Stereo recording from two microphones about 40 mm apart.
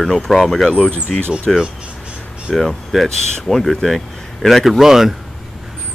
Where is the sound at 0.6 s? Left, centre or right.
Centre.